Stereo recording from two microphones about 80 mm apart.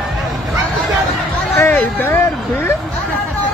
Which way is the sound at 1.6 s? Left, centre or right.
Left.